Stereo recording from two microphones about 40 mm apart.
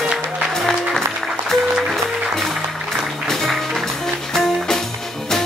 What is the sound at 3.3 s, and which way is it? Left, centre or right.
Music, centre.